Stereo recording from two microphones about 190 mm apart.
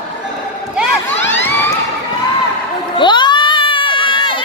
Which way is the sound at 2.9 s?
25° left (ahead or behind).